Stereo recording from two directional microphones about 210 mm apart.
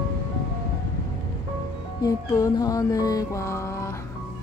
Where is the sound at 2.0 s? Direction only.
15° left (ahead or behind).